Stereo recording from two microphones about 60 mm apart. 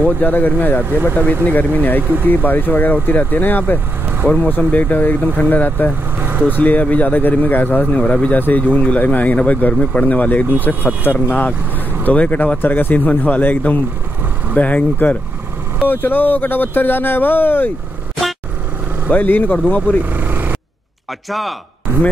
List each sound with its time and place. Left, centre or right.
0.0 s speech: left
6.1 s vehicle: right
6.5 s speech: left
19.0 s speech: left
20.1 s vehicle: right
21.3 s speech: centre